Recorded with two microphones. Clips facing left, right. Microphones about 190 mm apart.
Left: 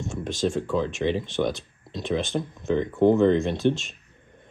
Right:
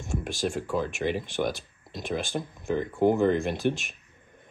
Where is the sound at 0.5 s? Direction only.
10° right (ahead or behind).